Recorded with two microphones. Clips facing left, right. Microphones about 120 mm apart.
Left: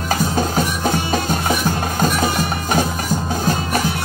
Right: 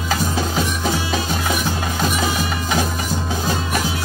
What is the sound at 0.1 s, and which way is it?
Music, 50° left (ahead or behind).